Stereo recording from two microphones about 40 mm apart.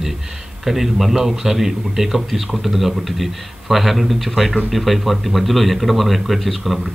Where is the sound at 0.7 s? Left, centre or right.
Centre.